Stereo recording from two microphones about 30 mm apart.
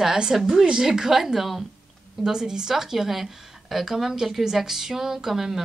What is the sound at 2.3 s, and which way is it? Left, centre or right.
A woman's voice, right.